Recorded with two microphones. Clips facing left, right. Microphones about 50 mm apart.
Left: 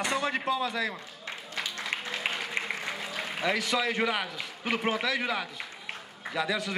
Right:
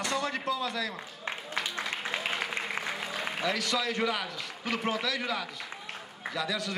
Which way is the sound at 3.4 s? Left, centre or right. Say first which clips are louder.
Left 3 dB; left.